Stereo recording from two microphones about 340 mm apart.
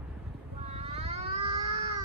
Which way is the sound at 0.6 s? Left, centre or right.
Centre.